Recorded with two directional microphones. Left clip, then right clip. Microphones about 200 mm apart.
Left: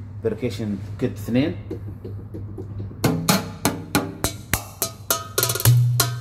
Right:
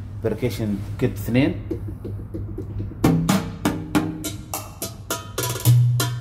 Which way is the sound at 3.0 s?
35° left (ahead or behind).